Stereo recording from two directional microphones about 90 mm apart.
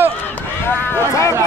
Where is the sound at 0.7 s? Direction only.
25° left (ahead or behind).